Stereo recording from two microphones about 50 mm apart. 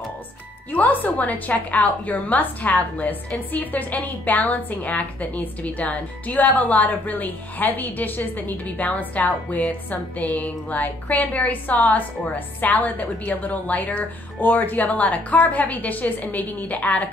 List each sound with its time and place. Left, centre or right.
0.7 s a woman's voice: left